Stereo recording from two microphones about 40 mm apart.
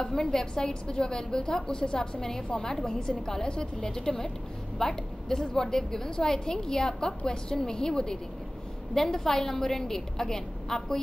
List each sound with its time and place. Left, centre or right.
0.0 s a woman's voice: centre